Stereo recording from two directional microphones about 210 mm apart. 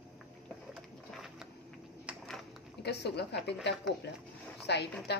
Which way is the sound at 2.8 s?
50° left (ahead or behind).